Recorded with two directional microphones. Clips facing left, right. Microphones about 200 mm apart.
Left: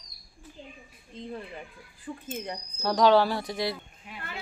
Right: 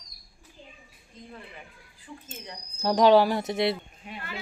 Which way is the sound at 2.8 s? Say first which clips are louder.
Right 2 dB; 15° right (ahead or behind).